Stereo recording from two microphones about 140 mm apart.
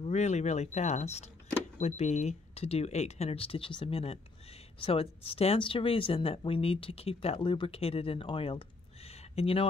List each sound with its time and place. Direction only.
0.0 s speech: 55° left (ahead or behind)